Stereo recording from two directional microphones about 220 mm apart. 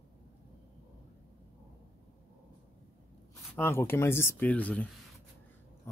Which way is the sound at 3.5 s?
10° left (ahead or behind).